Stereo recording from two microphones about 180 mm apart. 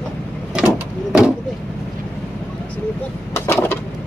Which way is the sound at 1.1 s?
5° right (ahead or behind).